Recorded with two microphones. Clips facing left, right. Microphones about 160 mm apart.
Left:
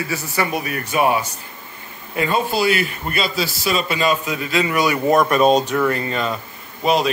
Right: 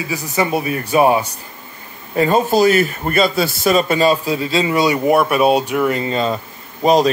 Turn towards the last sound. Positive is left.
turn(degrees=-40)  # may be behind; listen again after turning